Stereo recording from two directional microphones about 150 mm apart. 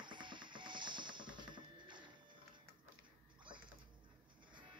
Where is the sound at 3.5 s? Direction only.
30° right (ahead or behind).